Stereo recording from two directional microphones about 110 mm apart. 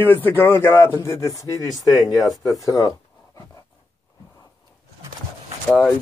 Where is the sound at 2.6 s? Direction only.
30° left (ahead or behind).